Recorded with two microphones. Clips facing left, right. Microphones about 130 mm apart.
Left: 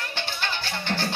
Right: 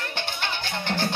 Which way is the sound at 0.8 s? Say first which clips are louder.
Right 2 dB; 15° right (ahead or behind).